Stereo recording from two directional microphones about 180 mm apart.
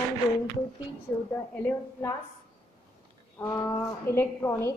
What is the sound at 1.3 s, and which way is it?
Speech, 10° left (ahead or behind).